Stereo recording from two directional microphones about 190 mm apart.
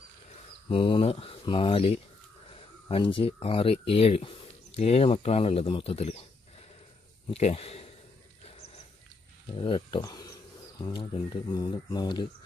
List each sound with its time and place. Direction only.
0.7 s speech: 25° left (ahead or behind)
7.2 s speech: 35° left (ahead or behind)
9.6 s speech: 25° left (ahead or behind)